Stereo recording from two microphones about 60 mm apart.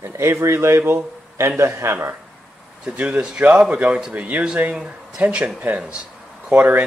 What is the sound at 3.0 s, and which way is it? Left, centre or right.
A man's voice, right.